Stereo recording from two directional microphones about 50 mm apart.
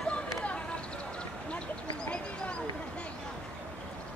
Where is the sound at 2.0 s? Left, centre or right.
Left.